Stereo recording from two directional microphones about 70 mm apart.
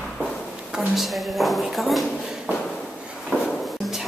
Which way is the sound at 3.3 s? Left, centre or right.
Right.